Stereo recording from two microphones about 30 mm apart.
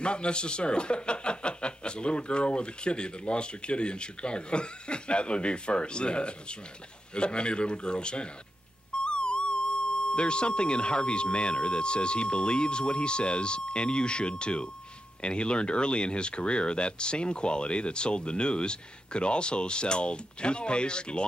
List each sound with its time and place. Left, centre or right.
0.0 s speech: left